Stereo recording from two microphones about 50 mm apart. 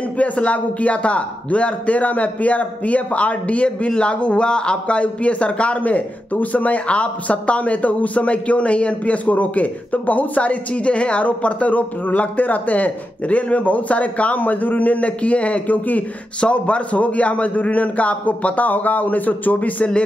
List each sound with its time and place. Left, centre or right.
0.2 s a man's voice: left